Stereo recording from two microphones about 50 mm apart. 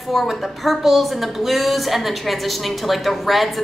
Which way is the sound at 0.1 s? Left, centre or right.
Centre.